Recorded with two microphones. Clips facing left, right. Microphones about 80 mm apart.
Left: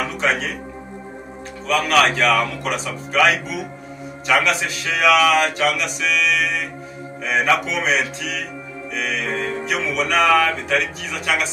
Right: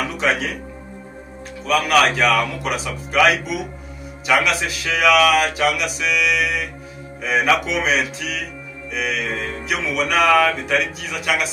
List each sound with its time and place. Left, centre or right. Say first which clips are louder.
0.0 s speech: even; centre
1.7 s speech: right 1 dB; centre